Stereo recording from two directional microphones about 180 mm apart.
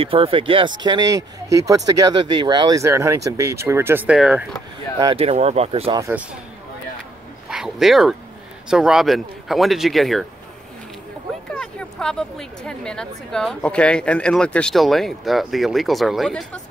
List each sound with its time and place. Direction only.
0.0 s speech: 30° right (ahead or behind); by 4.5 s 5° right (ahead or behind)
5.0 s speech: 35° right (ahead or behind)
7.4 s a woman's voice: centre (ahead or behind)
11.5 s a woman's voice: 5° left (ahead or behind)